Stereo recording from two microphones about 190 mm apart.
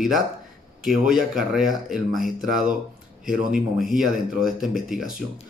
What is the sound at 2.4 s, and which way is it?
Speech, 45° right (ahead or behind).